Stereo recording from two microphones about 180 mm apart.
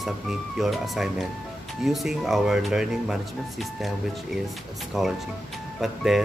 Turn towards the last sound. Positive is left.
turn(degrees=0)  # may be behind; listen again after turning